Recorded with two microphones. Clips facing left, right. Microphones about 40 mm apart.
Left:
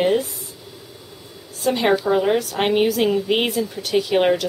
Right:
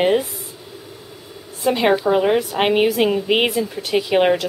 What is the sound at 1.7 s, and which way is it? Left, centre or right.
A woman's voice, centre.